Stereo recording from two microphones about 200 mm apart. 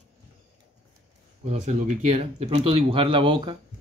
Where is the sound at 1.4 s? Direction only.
30° right (ahead or behind).